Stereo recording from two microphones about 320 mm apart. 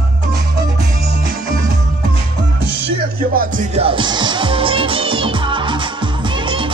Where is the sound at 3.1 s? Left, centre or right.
Right.